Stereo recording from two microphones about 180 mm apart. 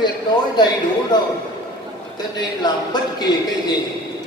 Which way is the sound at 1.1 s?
25° left (ahead or behind).